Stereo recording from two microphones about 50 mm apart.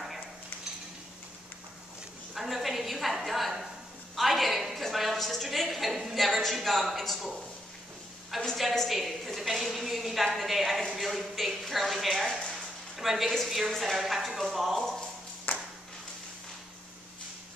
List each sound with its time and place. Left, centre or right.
2.3 s a sound: centre
6.1 s a woman's voice: centre
8.5 s a woman's voice: centre
15.5 s ping: left